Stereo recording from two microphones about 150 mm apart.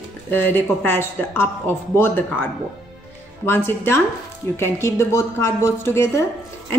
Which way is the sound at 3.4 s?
15° left (ahead or behind).